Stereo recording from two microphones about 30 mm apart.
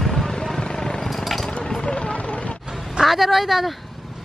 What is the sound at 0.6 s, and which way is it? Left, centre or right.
Vehicle, left.